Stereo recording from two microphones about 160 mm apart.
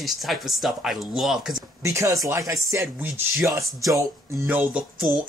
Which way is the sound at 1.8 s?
20° right (ahead or behind).